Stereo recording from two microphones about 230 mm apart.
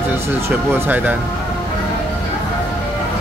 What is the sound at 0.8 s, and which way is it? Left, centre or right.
Speech, centre.